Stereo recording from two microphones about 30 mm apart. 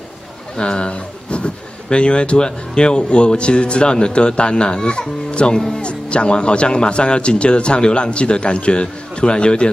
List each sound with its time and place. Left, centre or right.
0.6 s speech: left